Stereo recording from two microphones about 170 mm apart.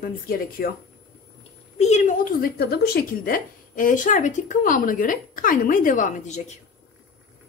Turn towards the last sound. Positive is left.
turn(degrees=40)  # may be behind; listen again after turning